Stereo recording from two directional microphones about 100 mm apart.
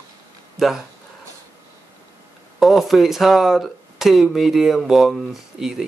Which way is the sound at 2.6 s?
Centre (ahead or behind).